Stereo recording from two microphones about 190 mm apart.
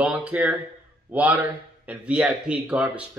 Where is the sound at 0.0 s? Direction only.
5° right (ahead or behind).